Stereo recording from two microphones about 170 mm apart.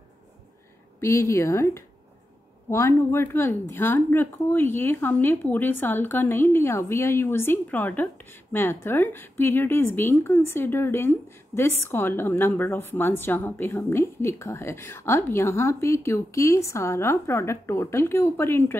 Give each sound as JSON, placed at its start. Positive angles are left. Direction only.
{"t": 1.0, "sound": "a woman's voice", "side_deg": 15}